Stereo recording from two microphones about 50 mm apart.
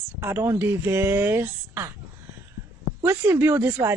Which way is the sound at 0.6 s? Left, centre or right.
Right.